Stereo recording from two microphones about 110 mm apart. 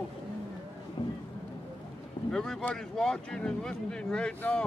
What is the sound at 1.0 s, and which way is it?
Boat, 40° left (ahead or behind).